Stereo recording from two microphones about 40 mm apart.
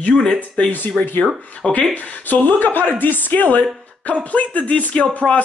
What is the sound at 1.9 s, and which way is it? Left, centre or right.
Speech, left.